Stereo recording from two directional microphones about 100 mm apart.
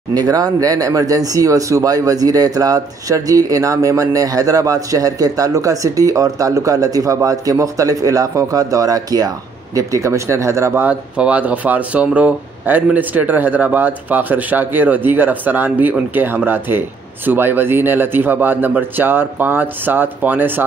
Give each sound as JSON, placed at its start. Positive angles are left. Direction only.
{"t": 0.1, "sound": "speech", "side_deg": -40}